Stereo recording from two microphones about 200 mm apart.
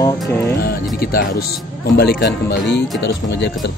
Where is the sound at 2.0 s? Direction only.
55° left (ahead or behind).